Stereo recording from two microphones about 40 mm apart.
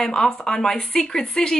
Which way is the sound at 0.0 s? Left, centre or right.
Centre.